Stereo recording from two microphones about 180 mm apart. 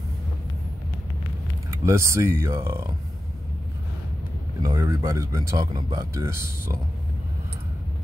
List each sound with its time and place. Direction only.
1.7 s speech: 15° right (ahead or behind)
4.6 s speech: 20° right (ahead or behind)